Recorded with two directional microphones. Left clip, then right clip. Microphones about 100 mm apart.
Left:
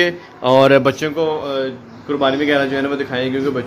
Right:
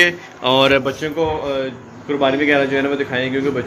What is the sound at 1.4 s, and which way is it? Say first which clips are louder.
A man's voice: even; 30° left (ahead or behind).